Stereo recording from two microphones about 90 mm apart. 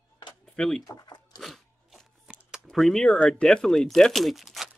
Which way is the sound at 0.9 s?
50° left (ahead or behind).